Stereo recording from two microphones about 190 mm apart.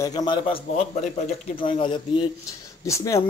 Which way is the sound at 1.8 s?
25° left (ahead or behind).